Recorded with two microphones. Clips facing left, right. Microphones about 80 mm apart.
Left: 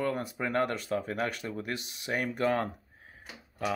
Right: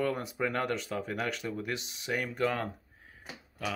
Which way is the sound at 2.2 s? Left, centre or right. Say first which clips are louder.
Left 4 dB; left.